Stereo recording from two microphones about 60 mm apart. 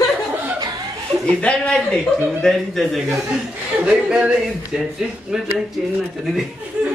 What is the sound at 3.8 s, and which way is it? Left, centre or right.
Speech, centre.